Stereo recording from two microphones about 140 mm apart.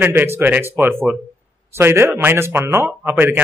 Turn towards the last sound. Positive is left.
turn(degrees=-15)  # may be behind; listen again after turning